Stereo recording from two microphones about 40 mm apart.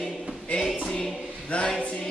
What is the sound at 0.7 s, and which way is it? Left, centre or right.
Speech, left.